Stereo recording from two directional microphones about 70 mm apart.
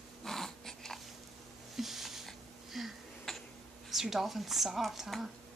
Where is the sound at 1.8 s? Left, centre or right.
Centre.